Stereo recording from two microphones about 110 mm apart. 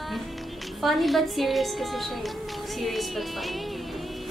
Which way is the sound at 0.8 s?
Centre (ahead or behind).